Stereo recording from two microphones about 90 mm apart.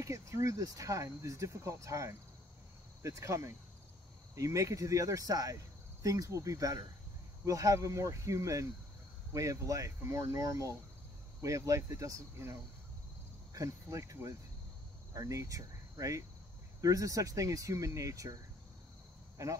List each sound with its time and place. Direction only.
0.0 s speech: 35° right (ahead or behind)